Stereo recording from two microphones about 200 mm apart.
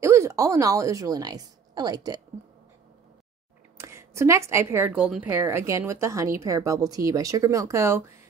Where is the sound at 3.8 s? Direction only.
15° right (ahead or behind).